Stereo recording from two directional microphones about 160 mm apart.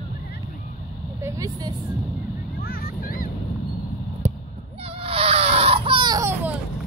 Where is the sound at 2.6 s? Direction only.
70° left (ahead or behind).